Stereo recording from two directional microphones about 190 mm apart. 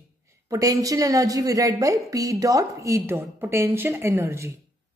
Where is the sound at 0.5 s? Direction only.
20° right (ahead or behind).